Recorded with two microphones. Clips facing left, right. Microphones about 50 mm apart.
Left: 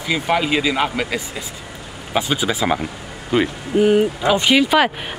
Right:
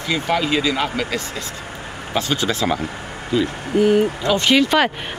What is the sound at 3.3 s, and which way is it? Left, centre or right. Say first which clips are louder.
Speech: left 2 dB; left.